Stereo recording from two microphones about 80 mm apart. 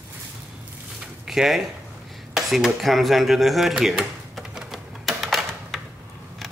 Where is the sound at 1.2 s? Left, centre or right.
Centre.